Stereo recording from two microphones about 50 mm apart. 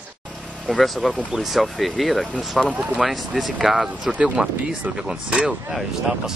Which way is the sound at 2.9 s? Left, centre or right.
Centre.